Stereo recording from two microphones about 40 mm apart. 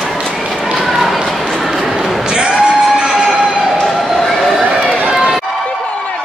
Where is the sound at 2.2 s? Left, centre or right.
Right.